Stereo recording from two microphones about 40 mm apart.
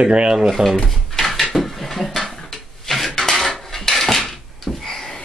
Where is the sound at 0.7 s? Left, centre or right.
Centre.